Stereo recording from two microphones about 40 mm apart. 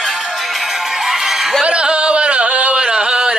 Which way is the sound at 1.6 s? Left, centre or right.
Right.